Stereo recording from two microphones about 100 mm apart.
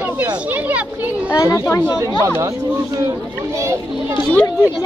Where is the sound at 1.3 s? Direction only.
35° left (ahead or behind).